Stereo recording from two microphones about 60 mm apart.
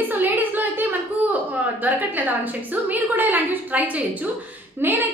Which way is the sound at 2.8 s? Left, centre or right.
Right.